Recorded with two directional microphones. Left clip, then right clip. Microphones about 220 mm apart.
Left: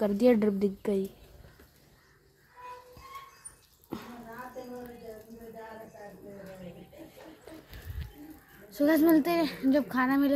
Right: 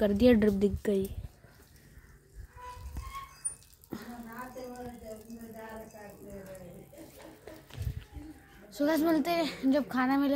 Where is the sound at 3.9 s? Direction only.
5° left (ahead or behind).